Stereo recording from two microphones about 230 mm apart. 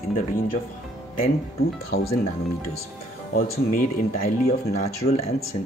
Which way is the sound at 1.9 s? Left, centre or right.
Left.